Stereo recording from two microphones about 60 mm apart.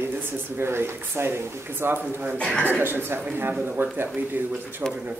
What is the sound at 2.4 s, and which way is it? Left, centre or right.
Speech, centre.